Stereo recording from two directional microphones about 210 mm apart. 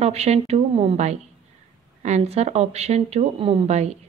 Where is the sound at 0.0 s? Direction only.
30° right (ahead or behind).